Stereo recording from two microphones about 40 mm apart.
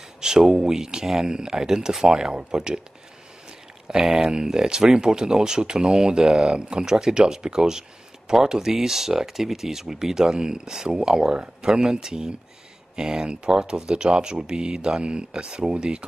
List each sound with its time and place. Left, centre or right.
0.2 s speech: centre
3.8 s speech: centre